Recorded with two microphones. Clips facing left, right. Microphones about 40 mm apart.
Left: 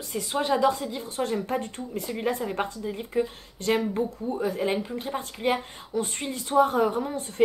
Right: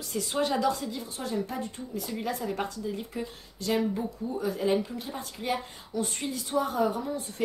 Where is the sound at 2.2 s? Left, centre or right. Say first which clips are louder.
Left 4 dB; left.